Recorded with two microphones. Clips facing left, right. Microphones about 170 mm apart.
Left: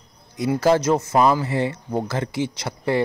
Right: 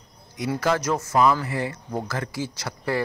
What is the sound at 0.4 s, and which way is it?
Speech, 30° left (ahead or behind).